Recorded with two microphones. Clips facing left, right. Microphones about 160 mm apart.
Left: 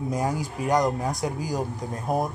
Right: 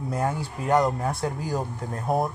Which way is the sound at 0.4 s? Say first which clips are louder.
Right 2 dB; 15° left (ahead or behind).